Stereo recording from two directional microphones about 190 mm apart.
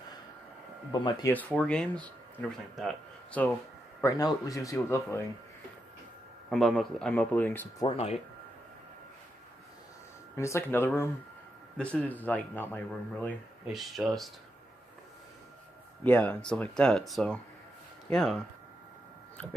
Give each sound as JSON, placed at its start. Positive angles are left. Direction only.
{"t": 1.3, "sound": "speech", "side_deg": 10}
{"t": 6.5, "sound": "speech", "side_deg": 0}
{"t": 7.8, "sound": "speech", "side_deg": 30}
{"t": 10.3, "sound": "speech", "side_deg": 15}
{"t": 16.0, "sound": "speech", "side_deg": 10}